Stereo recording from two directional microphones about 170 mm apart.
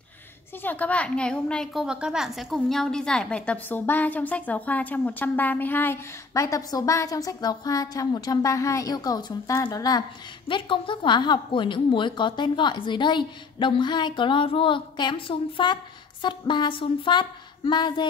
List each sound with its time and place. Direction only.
0.6 s a woman's voice: 10° left (ahead or behind); by 18.0 s 25° left (ahead or behind)